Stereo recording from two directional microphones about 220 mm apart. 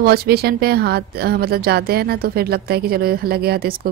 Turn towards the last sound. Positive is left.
turn(degrees=-45)  # may be behind; listen again after turning